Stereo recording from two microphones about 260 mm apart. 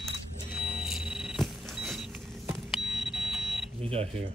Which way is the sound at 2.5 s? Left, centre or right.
Centre.